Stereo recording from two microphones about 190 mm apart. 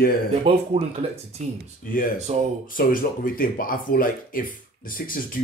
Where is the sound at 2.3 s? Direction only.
35° right (ahead or behind).